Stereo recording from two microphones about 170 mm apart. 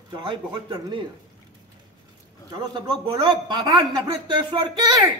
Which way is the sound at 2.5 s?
25° right (ahead or behind).